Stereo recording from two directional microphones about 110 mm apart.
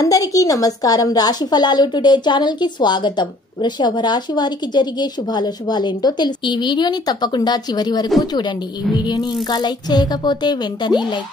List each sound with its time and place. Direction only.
0.0 s a woman's voice: 30° left (ahead or behind)